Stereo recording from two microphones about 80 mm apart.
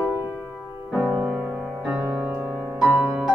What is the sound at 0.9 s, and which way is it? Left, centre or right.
Music, right.